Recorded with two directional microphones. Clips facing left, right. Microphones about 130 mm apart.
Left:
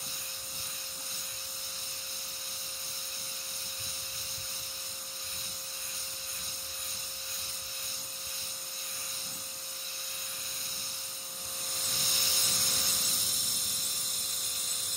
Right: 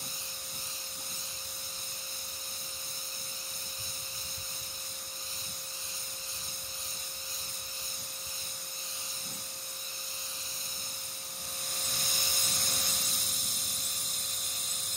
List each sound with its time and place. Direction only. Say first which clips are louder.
12.0 s spray: even; 50° right (ahead or behind)
12.4 s spray: right 1 dB; centre (ahead or behind)